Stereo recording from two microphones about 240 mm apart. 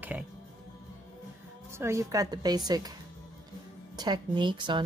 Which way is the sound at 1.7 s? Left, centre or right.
Centre.